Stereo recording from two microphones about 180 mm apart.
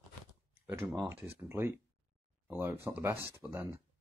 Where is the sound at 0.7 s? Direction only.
15° right (ahead or behind).